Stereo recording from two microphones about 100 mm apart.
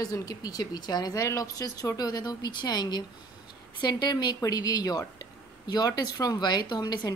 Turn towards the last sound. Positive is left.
turn(degrees=45)  # may be behind; listen again after turning